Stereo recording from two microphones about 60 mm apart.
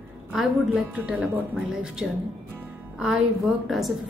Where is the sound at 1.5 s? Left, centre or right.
Centre.